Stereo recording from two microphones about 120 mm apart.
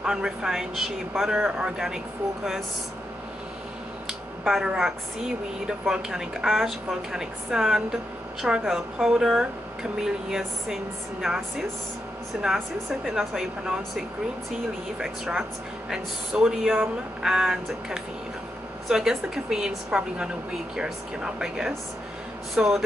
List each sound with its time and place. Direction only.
0.0 s speech: 5° right (ahead or behind)
4.1 s speech: 5° right (ahead or behind)